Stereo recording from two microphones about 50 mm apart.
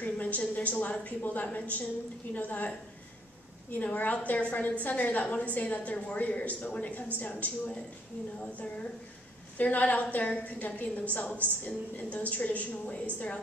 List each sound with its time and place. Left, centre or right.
0.0 s a woman's voice: left
3.7 s a woman's voice: left
9.6 s a woman's voice: left